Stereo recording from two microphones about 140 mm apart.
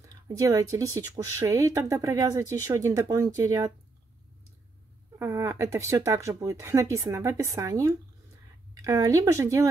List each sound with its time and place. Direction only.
0.0 s speech: 20° right (ahead or behind)
5.2 s speech: 20° right (ahead or behind)